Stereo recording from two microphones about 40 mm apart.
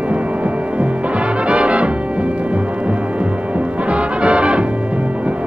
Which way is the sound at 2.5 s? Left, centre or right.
Right.